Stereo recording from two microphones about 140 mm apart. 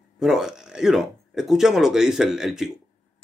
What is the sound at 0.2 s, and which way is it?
Speech, 5° right (ahead or behind).